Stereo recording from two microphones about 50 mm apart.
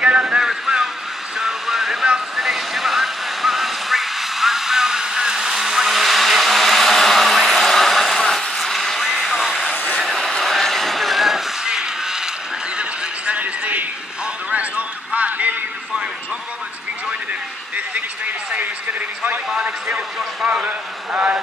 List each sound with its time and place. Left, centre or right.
0.0 s vehicle: centre
0.4 s vehicle: centre
1.4 s music: centre
2.3 s vehicle: centre
10.0 s vehicle: centre
11.6 s a sound: centre; by 15.5 s right
17.3 s a sound: right
19.5 s vehicle: centre
20.6 s vehicle: right